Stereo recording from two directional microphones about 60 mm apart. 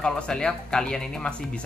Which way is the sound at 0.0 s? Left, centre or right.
Centre.